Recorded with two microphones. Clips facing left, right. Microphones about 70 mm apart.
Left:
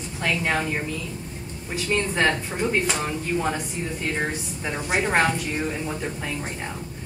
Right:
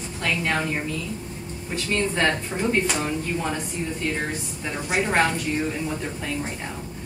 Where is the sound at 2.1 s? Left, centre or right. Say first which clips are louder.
Left 1 dB; centre.